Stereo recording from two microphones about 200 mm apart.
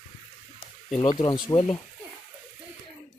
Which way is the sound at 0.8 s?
25° left (ahead or behind).